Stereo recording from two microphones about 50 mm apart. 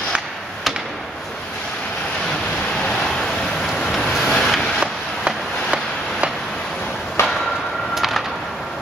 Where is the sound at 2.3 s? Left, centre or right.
Centre.